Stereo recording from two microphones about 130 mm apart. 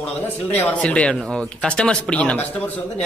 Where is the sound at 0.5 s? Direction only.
10° left (ahead or behind).